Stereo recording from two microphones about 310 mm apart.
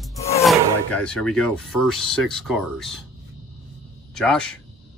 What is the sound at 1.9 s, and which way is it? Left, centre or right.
Speech, centre.